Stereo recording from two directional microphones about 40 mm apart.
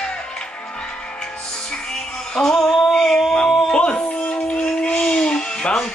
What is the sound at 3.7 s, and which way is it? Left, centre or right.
Music, left.